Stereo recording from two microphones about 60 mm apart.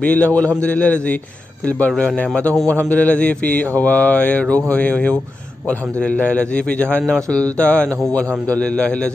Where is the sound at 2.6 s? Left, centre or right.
Left.